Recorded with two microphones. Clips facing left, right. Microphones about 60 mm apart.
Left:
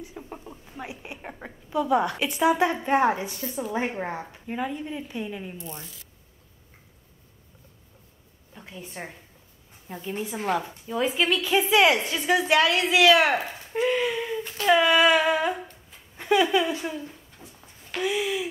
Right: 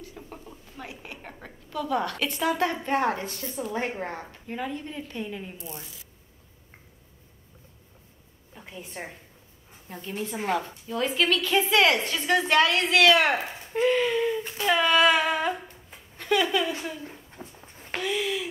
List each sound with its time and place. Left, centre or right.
0.0 s a woman's voice: centre
5.6 s humming: centre
8.5 s a woman's voice: centre
9.8 s a woman's voice: centre
13.7 s humming: centre
14.4 s a sound: centre
14.8 s humming: centre
16.2 s speech: centre
17.1 s a sound: right
18.0 s a woman's voice: centre